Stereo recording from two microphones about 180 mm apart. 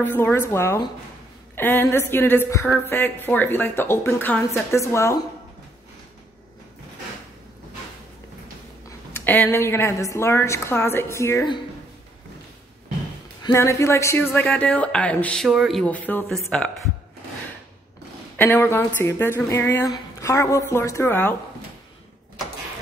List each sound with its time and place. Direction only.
0.0 s a woman's voice: 10° left (ahead or behind)
8.8 s a woman's voice: 10° left (ahead or behind)
13.5 s a woman's voice: 15° left (ahead or behind)
18.3 s a woman's voice: 10° left (ahead or behind)